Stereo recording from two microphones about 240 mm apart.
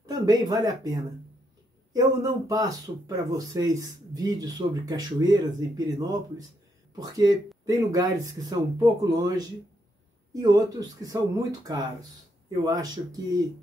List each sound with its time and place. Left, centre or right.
0.0 s speech: centre
7.0 s speech: centre